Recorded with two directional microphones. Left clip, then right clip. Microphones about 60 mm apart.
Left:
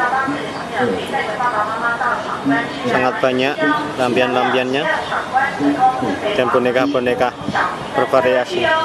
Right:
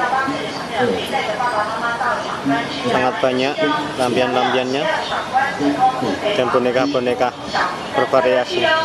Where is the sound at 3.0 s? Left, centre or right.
Centre.